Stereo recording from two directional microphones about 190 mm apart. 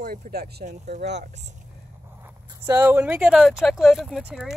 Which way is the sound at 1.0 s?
60° right (ahead or behind).